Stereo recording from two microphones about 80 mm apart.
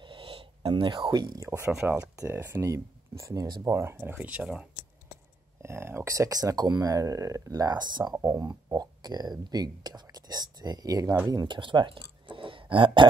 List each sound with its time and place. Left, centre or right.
0.0 s a sound: right
1.4 s speech: right
2.3 s speech: right
5.6 s speech: right
8.2 s speech: right
11.2 s speech: right